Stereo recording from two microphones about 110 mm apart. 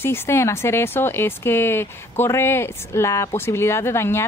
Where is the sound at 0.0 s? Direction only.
25° left (ahead or behind).